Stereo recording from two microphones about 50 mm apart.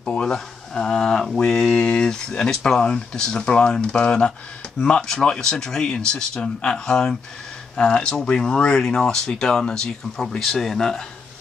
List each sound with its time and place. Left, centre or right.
0.0 s speech: centre